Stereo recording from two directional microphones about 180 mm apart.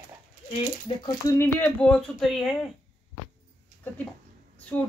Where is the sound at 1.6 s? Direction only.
5° left (ahead or behind).